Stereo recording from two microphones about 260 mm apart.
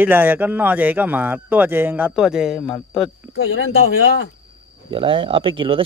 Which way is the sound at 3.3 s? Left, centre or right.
Left.